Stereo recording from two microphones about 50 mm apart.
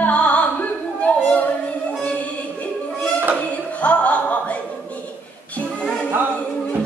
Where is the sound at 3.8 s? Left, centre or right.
Left.